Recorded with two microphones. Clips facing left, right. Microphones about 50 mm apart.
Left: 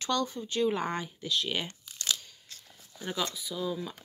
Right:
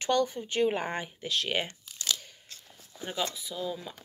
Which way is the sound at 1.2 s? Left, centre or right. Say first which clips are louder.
Right 1 dB; right.